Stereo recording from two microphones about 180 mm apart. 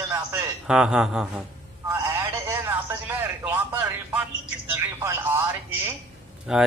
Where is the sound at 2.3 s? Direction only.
15° right (ahead or behind).